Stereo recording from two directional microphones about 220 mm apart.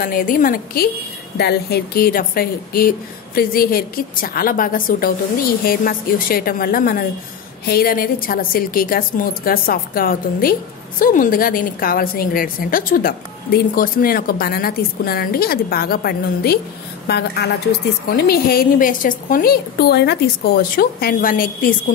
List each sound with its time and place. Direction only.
0.0 s a woman's voice: 40° left (ahead or behind)